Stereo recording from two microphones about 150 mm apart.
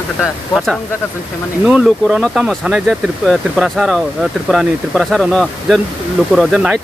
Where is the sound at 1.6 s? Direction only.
5° right (ahead or behind).